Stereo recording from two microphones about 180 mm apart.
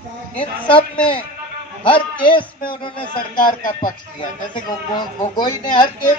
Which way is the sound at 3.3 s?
50° left (ahead or behind).